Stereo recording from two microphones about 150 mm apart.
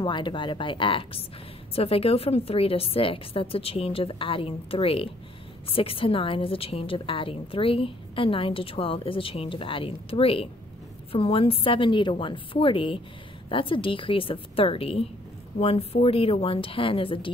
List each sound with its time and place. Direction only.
0.0 s a woman's voice: 30° left (ahead or behind)